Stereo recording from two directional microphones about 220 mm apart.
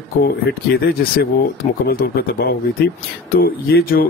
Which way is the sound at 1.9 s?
45° left (ahead or behind).